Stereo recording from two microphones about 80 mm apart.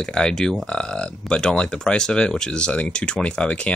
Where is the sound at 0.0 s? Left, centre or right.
Centre.